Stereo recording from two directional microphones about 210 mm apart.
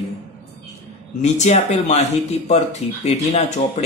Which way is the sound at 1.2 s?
35° left (ahead or behind).